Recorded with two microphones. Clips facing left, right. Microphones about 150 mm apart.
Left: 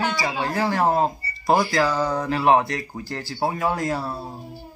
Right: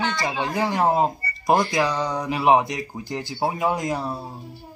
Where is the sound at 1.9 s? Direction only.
5° left (ahead or behind).